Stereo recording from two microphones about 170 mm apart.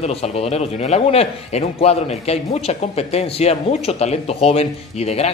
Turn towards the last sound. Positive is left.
turn(degrees=35)  # may be behind; listen again after turning